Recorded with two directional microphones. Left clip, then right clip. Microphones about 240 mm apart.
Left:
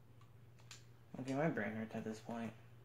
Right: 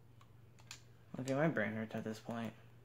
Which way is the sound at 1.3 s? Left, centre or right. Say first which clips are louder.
Right 4 dB; right.